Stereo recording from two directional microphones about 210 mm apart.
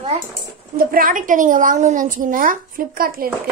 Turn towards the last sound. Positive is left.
turn(degrees=-45)  # may be behind; listen again after turning